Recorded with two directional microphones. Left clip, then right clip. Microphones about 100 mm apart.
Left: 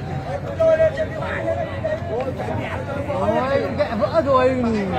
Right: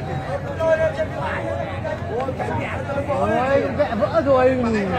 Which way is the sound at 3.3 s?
10° right (ahead or behind).